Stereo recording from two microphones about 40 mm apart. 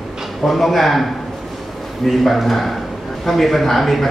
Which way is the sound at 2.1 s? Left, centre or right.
Centre.